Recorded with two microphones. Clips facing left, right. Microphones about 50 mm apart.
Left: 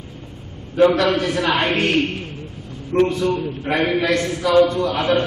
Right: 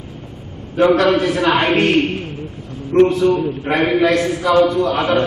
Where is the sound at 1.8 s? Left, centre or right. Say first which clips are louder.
Right 4 dB; centre.